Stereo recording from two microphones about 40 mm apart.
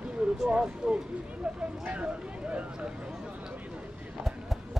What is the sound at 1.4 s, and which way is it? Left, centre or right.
Speech, centre.